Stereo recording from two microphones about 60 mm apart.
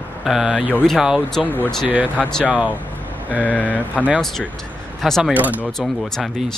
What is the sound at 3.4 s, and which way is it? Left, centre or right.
Speech, left.